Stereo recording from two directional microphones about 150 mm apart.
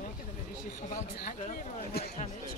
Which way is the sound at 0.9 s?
65° left (ahead or behind).